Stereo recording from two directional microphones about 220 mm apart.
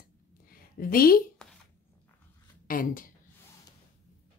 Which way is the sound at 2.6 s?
40° left (ahead or behind).